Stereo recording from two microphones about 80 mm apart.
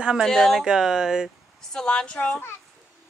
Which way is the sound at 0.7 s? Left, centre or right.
Centre.